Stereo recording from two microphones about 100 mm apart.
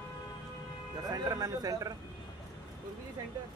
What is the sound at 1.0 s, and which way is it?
Speech, 40° right (ahead or behind).